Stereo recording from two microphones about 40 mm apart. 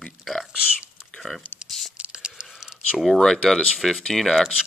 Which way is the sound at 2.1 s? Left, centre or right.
Right.